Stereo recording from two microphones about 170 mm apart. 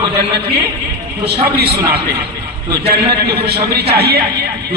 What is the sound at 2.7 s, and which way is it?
A man's voice, 70° right (ahead or behind).